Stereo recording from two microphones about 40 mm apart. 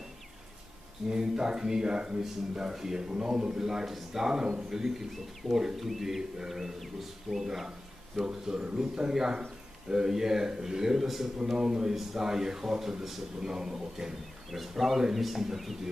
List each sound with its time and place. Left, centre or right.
1.0 s speech: centre